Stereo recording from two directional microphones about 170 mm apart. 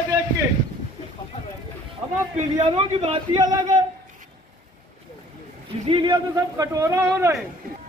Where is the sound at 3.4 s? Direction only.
20° right (ahead or behind).